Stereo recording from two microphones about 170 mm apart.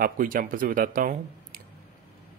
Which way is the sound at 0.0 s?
55° right (ahead or behind).